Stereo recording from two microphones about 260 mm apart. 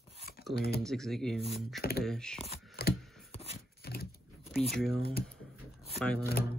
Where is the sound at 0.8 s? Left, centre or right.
Centre.